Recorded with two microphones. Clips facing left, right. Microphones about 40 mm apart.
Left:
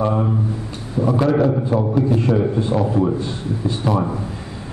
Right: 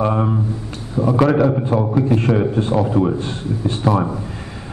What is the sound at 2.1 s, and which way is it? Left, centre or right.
Speech, right.